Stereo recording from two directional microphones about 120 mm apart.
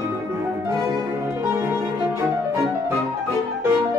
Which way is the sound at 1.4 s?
20° right (ahead or behind).